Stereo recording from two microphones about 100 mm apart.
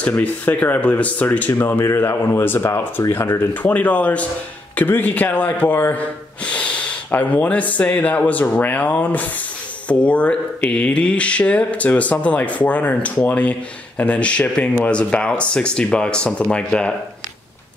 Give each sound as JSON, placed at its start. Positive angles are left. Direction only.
{"t": 0.0, "sound": "speech", "side_deg": 15}